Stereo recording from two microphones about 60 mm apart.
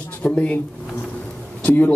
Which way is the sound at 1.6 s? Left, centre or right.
Left.